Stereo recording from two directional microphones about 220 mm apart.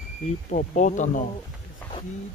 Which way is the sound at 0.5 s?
35° left (ahead or behind).